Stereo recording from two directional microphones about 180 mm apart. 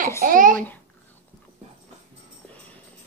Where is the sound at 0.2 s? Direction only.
45° right (ahead or behind).